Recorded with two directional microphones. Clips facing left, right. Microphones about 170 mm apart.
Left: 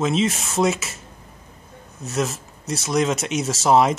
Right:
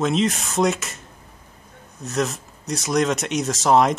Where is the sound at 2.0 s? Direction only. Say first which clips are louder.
Even; centre (ahead or behind).